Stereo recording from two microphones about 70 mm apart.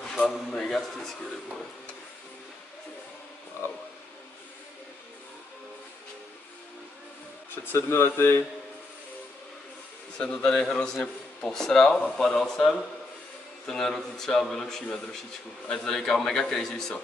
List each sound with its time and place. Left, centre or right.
0.0 s speech: centre
7.6 s speech: left
10.1 s a man's voice: centre